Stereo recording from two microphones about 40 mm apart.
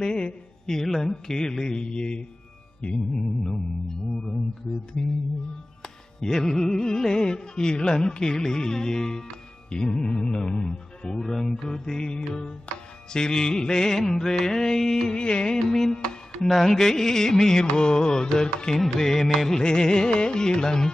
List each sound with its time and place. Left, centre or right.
0.0 s music: centre
1.1 s mantra: centre
5.0 s music: centre
19.6 s music: centre